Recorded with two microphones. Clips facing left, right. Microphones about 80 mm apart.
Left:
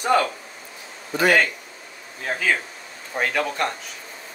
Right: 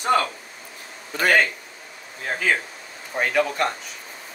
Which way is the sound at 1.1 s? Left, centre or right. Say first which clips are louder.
Left 1 dB; right.